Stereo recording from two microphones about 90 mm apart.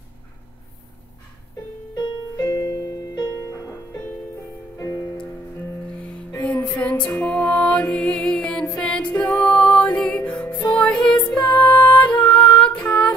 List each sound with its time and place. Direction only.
2.0 s music: 45° left (ahead or behind)
6.4 s music: 15° left (ahead or behind)